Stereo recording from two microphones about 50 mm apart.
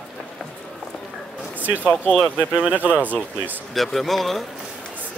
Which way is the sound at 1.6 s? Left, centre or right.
Right.